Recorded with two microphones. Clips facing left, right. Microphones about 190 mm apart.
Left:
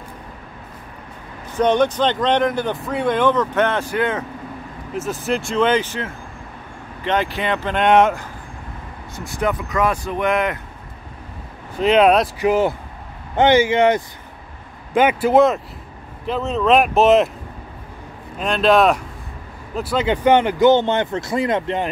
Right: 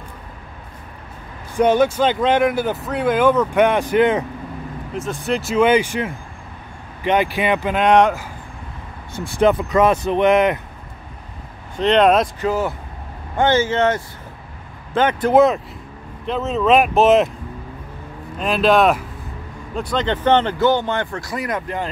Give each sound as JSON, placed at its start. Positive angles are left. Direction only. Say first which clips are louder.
{"t": 1.6, "sound": "speech", "louder": "right 1 dB", "side_deg": -5}
{"t": 4.9, "sound": "speech", "louder": "even", "side_deg": 5}
{"t": 7.8, "sound": "speech", "louder": "even", "side_deg": 0}
{"t": 9.1, "sound": "speech", "louder": "right 6 dB", "side_deg": -25}
{"t": 11.8, "sound": "speech", "louder": "even", "side_deg": 5}
{"t": 13.4, "sound": "speech", "louder": "left 3 dB", "side_deg": 15}
{"t": 18.4, "sound": "speech", "louder": "even", "side_deg": 0}